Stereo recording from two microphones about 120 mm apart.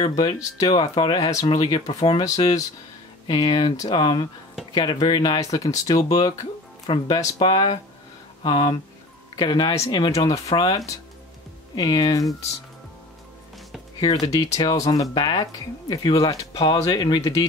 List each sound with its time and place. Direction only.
0.0 s speech: 35° left (ahead or behind)
14.2 s speech: 30° left (ahead or behind)